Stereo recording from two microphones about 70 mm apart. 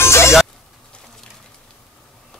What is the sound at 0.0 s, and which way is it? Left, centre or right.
Music, left.